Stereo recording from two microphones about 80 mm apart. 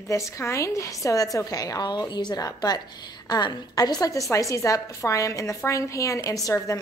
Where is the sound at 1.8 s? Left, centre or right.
Left.